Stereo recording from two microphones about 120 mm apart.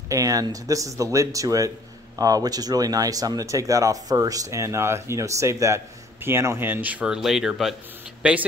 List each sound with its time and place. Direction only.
0.1 s speech: 30° right (ahead or behind); by 8.5 s 10° right (ahead or behind)